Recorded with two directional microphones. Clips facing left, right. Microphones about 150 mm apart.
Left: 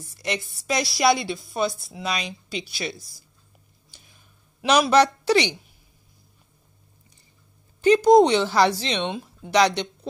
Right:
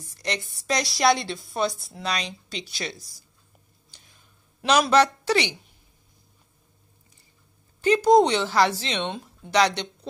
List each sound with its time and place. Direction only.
0.2 s speech: 10° left (ahead or behind)
4.6 s a man's voice: 10° left (ahead or behind)
7.8 s speech: 15° left (ahead or behind)